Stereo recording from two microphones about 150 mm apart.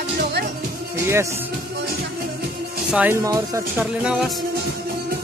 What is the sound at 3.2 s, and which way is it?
Speech, 20° right (ahead or behind).